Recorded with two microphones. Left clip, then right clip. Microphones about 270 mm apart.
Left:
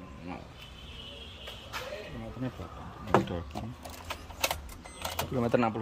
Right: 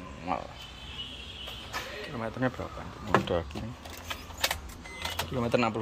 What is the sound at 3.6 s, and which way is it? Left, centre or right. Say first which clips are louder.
Keys jangling: even; left.